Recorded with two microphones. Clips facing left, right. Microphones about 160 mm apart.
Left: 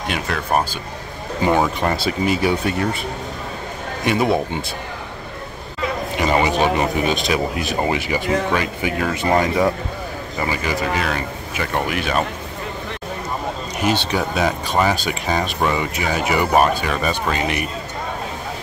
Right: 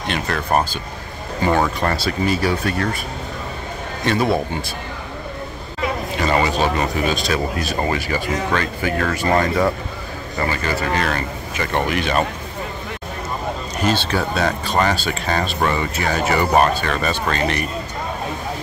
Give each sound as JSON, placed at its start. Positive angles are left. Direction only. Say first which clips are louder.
{"t": 0.1, "sound": "speech", "louder": "right 1 dB", "side_deg": 5}
{"t": 6.1, "sound": "speech", "louder": "left 1 dB", "side_deg": 15}
{"t": 13.7, "sound": "speech", "louder": "even", "side_deg": 15}